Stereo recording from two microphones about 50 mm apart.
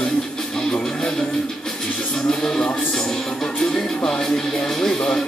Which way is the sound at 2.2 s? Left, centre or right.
Centre.